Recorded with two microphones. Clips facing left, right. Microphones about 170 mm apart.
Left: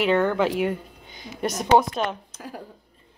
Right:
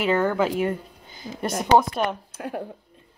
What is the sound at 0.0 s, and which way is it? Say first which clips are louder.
Speech: left 1 dB; 5° right (ahead or behind).